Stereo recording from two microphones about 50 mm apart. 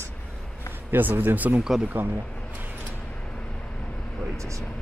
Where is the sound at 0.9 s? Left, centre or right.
Right.